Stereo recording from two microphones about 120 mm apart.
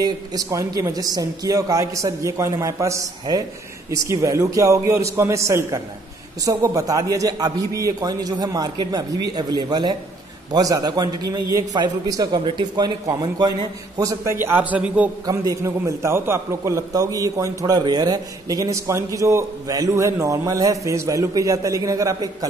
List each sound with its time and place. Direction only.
0.0 s a man's voice: 30° right (ahead or behind); by 15.0 s 15° right (ahead or behind)
15.2 s a man's voice: 30° right (ahead or behind)